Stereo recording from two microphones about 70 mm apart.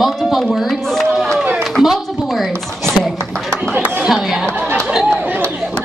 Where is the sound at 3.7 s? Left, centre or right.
Right.